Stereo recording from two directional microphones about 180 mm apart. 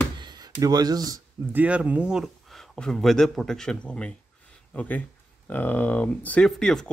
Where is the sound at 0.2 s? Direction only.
25° right (ahead or behind).